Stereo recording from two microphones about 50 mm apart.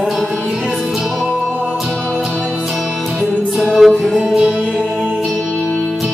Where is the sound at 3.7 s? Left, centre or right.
Centre.